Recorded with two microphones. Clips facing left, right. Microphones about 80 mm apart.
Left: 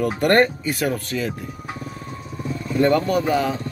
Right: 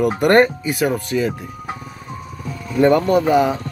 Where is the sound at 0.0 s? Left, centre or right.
Centre.